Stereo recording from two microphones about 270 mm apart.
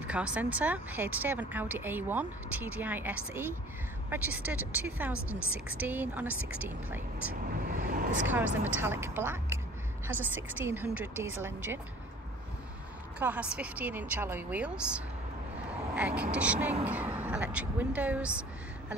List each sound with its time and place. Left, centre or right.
0.0 s speech: centre
7.6 s vehicle: right
8.3 s speech: centre
13.2 s speech: centre
15.9 s speech: centre